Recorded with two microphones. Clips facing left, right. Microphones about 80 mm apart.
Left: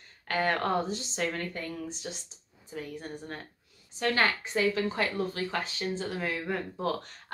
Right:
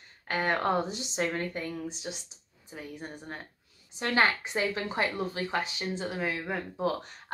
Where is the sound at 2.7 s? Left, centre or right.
Centre.